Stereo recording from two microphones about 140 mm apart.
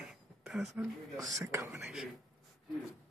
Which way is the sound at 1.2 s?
25° right (ahead or behind).